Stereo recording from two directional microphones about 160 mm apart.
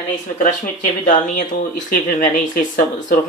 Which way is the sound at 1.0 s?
55° left (ahead or behind).